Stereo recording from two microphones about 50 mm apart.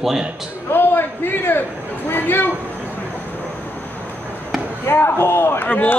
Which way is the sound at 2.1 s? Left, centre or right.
Left.